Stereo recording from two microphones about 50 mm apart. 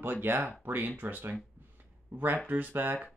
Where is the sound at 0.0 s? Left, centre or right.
Right.